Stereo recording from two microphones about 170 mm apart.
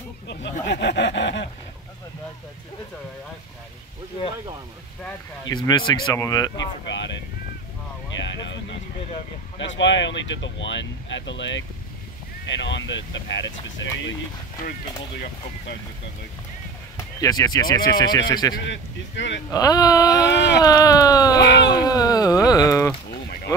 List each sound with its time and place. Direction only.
0.3 s speech: 90° left
5.5 s speech: 25° left (ahead or behind)
8.2 s vehicle: 90° left
9.6 s speech: 90° left
16.9 s speech: 20° left (ahead or behind)
18.5 s speech: 90° left
19.5 s speech: 20° left (ahead or behind)
20.2 s speech: 90° left
20.6 s speech: 20° left (ahead or behind)
21.4 s speech: 90° left
21.6 s speech: 20° left (ahead or behind)